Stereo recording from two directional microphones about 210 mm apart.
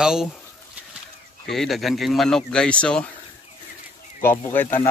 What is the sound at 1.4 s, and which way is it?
Speech, centre (ahead or behind).